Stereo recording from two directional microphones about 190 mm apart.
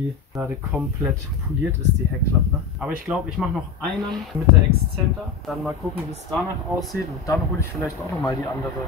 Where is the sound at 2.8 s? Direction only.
5° right (ahead or behind).